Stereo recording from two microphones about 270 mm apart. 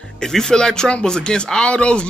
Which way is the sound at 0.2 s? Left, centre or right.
Centre.